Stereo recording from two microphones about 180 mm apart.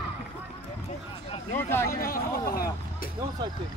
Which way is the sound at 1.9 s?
55° left (ahead or behind).